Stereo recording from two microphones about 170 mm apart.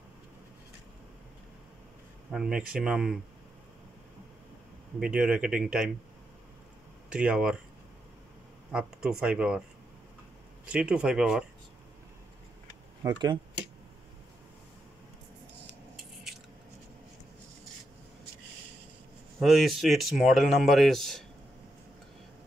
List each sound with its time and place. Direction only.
2.3 s speech: 5° right (ahead or behind)
5.0 s speech: 5° right (ahead or behind)
7.1 s speech: 5° right (ahead or behind)
8.7 s speech: 5° right (ahead or behind)
10.6 s speech: 5° right (ahead or behind)
13.0 s speech: 20° right (ahead or behind)
19.4 s speech: centre (ahead or behind)